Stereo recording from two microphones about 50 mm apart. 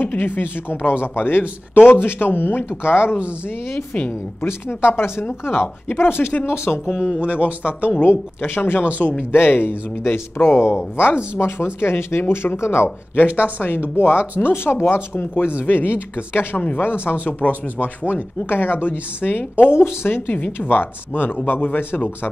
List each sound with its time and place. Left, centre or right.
0.0 s a woman's voice: left
3.9 s speech: left
4.5 s a woman's voice: left
7.2 s a man's voice: right
8.0 s a woman's voice: left
13.1 s a woman's voice: left